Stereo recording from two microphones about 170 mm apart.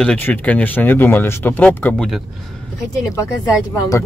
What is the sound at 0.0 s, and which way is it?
Speech, 5° left (ahead or behind).